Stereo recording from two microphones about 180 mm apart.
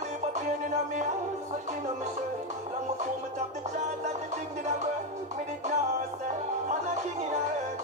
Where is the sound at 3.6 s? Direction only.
40° right (ahead or behind).